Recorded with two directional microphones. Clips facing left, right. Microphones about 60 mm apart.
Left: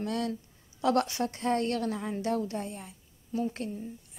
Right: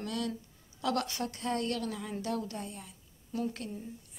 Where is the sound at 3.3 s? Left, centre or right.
Centre.